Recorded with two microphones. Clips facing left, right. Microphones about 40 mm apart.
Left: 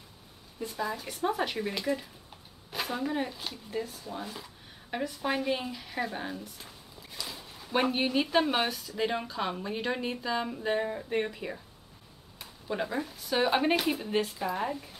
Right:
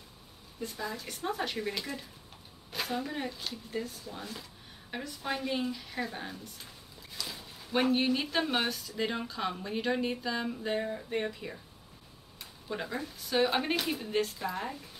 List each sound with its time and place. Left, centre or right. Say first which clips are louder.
0.6 s speech: left 4 dB; centre